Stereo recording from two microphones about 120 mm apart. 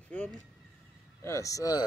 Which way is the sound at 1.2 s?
25° left (ahead or behind).